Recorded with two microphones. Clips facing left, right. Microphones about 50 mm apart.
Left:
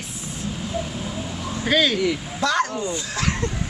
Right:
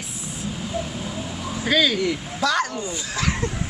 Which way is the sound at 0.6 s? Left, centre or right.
Centre.